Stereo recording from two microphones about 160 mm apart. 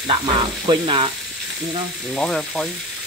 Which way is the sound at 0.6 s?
30° right (ahead or behind).